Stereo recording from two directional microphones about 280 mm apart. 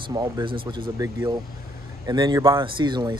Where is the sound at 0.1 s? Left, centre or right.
Centre.